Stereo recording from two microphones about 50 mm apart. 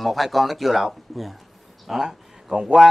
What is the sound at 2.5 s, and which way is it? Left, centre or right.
Speech, centre.